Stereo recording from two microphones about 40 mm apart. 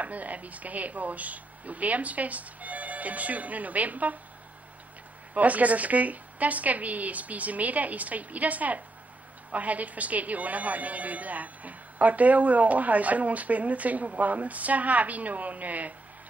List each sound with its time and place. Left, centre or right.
0.0 s a woman's voice: right
5.3 s a woman's voice: right